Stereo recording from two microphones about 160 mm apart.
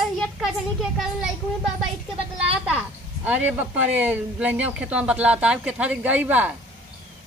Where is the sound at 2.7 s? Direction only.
5° right (ahead or behind).